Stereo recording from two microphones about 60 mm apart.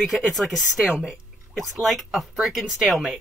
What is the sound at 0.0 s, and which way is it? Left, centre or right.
Speech, centre.